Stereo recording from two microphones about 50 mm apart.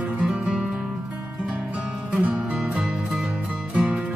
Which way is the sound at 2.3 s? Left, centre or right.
Right.